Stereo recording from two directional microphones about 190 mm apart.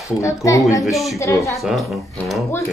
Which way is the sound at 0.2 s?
15° left (ahead or behind).